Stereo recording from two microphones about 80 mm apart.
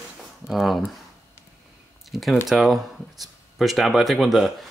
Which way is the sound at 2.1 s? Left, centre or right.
Centre.